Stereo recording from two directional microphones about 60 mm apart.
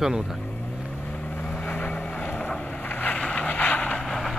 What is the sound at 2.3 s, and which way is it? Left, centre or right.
Boat, left.